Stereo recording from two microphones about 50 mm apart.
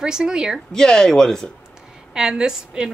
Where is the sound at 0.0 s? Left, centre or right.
Centre.